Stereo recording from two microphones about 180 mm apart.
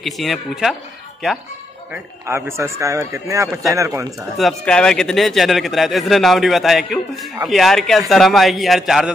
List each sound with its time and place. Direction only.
0.0 s a man's voice: centre (ahead or behind)
1.9 s a man's voice: 15° right (ahead or behind)
4.4 s a man's voice: 5° left (ahead or behind)